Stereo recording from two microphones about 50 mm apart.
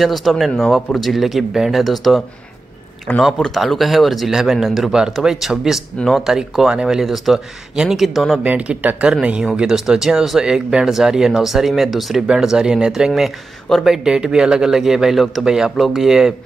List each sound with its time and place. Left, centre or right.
0.0 s speech: centre
3.3 s speech: centre
3.6 s speech: centre
8.5 s speech: right
9.5 s speech: centre